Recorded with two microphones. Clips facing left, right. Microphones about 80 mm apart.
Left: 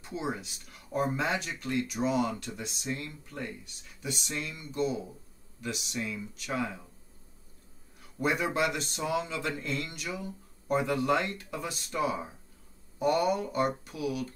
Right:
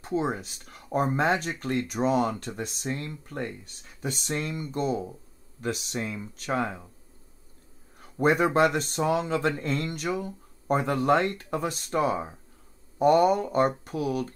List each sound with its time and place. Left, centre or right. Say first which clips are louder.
0.0 s speech: right 7 dB; right
8.0 s speech: right 7 dB; right